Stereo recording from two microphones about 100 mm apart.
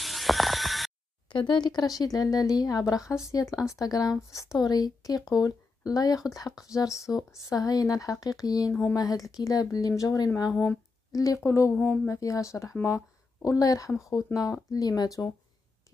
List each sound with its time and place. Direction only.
0.0 s a sound: centre (ahead or behind)
1.5 s speech: 45° left (ahead or behind); by 11.7 s 30° left (ahead or behind)
11.7 s a woman's voice: 15° left (ahead or behind)
12.1 s speech: 30° left (ahead or behind)